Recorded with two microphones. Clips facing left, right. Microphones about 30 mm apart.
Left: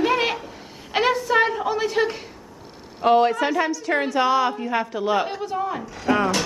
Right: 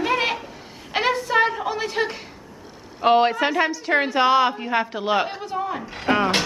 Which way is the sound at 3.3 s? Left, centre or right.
Centre.